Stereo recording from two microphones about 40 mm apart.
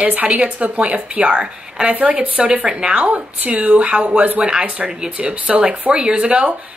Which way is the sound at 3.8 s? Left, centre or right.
Right.